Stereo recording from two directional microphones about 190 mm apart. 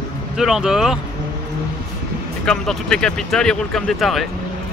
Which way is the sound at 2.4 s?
5° left (ahead or behind).